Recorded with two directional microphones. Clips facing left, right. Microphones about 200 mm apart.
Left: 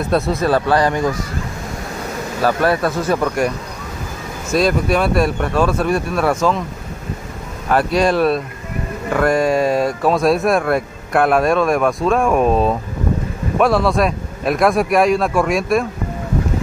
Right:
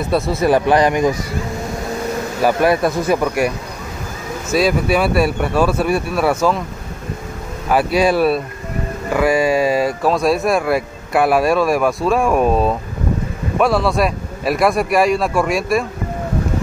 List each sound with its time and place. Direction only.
0.0 s speech: 5° right (ahead or behind)
0.5 s speech: 15° right (ahead or behind)
2.4 s speech: 15° right (ahead or behind)
7.6 s speech: 5° right (ahead or behind)